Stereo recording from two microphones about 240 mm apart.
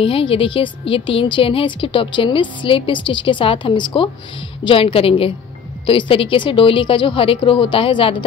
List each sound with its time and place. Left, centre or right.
0.0 s a woman's voice: left